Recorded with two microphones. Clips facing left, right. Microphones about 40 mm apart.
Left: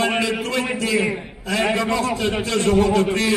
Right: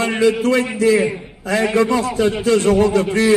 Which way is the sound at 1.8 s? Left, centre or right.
Left.